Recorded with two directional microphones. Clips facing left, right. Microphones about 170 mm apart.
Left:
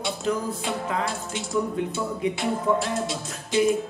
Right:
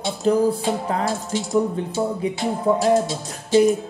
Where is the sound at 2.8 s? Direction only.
40° right (ahead or behind).